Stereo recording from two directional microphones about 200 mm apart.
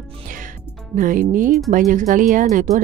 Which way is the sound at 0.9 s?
45° right (ahead or behind).